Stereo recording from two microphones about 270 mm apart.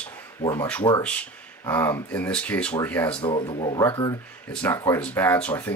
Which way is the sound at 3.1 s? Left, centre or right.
Centre.